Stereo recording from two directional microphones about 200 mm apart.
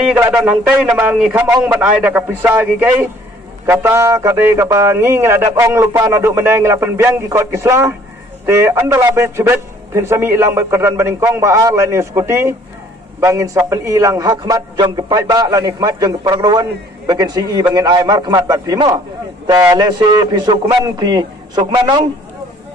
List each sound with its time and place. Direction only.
0.3 s a man's voice: 5° right (ahead or behind); by 22.0 s 20° right (ahead or behind)